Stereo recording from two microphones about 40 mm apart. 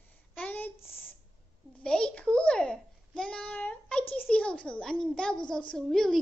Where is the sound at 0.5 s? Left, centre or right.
Left.